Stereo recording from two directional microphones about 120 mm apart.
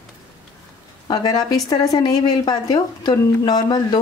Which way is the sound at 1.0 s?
35° left (ahead or behind).